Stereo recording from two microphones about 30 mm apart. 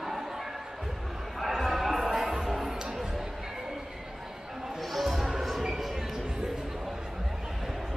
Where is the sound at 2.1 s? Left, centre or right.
Centre.